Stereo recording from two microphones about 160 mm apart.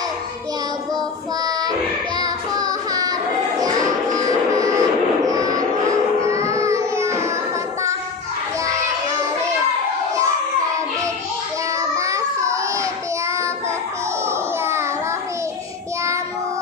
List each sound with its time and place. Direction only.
1.4 s music: 25° right (ahead or behind)
12.0 s baby cry: 20° right (ahead or behind)